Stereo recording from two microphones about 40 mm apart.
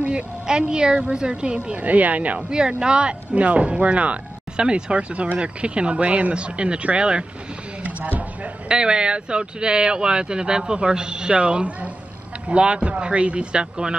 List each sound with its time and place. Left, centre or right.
0.5 s a woman's voice: right
2.8 s a woman's voice: right
4.6 s speech: right
7.8 s a sound: right
8.6 s speech: right